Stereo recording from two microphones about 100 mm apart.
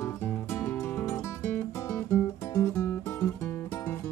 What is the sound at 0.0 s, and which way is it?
Music, 25° left (ahead or behind).